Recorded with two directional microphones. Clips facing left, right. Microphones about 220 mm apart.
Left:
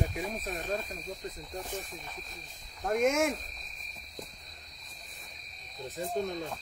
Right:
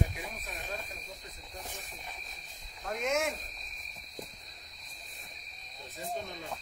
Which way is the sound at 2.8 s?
50° left (ahead or behind).